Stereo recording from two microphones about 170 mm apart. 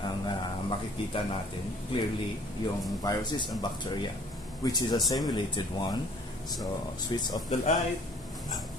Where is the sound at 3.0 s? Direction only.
25° left (ahead or behind).